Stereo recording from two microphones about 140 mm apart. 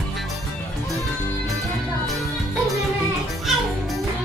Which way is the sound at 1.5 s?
Centre (ahead or behind).